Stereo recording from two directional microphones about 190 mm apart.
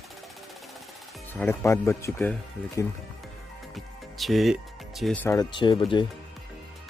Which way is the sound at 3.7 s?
Centre (ahead or behind).